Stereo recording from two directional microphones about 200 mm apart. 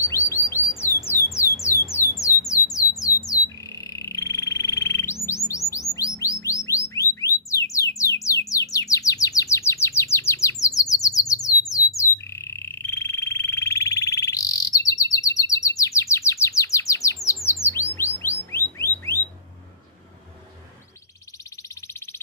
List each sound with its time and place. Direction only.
0.1 s bird: 15° left (ahead or behind)
1.0 s squawk: 15° left (ahead or behind)
1.9 s music: 15° left (ahead or behind)
3.2 s squawk: 15° left (ahead or behind)
5.7 s chirp: 15° left (ahead or behind)
6.6 s music: 15° left (ahead or behind)
8.0 s bird: 15° left (ahead or behind)
17.9 s chirp: 10° left (ahead or behind)
18.5 s bird: 10° left (ahead or behind)